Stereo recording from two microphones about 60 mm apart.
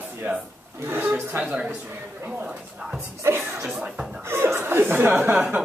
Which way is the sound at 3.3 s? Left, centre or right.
Right.